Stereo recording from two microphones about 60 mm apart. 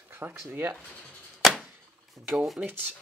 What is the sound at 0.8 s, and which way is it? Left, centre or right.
Speech, centre.